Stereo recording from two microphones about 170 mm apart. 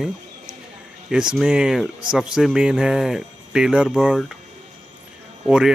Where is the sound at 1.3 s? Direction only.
5° right (ahead or behind).